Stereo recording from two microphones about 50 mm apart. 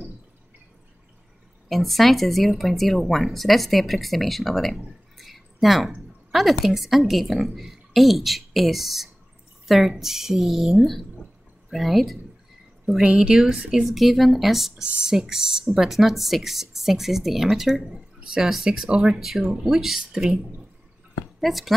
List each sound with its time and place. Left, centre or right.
1.7 s speech: centre
5.1 s a sound: centre
6.6 s speech: centre
13.0 s speech: centre
13.9 s speech: centre
14.8 s speech: centre
21.4 s speech: centre